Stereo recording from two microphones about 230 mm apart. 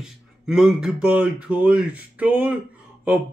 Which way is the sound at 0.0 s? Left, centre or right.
Centre.